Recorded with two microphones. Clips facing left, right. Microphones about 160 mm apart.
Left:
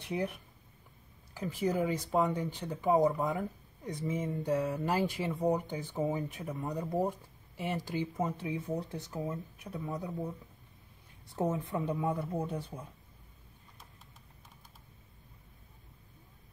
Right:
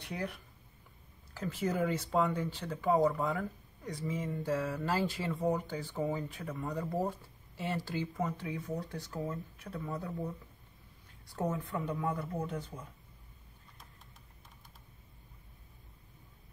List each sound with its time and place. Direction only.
0.1 s speech: 20° left (ahead or behind)
11.3 s speech: 25° left (ahead or behind)